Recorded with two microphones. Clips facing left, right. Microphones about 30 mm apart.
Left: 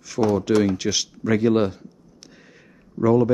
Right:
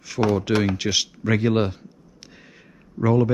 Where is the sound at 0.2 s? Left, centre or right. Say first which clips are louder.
Left 2 dB; right.